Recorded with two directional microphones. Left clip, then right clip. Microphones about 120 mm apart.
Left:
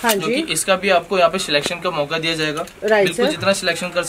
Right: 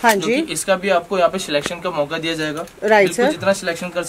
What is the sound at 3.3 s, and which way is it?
Speech, centre (ahead or behind).